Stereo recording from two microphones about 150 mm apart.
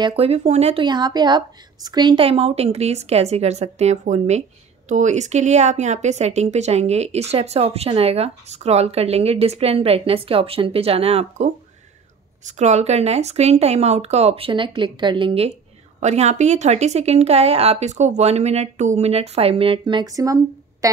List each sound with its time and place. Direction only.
0.0 s a woman's voice: 40° right (ahead or behind)
0.8 s a woman's voice: 30° right (ahead or behind)
16.0 s a woman's voice: 50° right (ahead or behind); by 20.3 s 20° right (ahead or behind)